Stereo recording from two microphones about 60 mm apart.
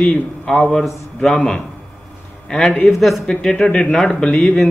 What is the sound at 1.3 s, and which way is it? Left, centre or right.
A man's voice, centre.